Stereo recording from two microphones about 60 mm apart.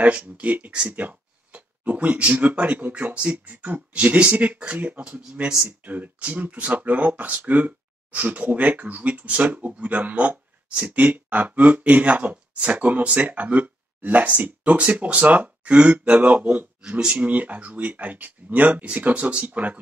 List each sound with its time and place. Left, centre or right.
0.0 s speech: right